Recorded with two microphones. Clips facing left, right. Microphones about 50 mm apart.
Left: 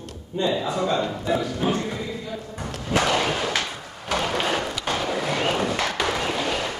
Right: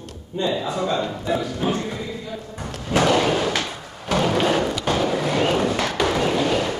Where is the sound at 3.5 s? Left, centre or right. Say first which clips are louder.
Right 2 dB; left.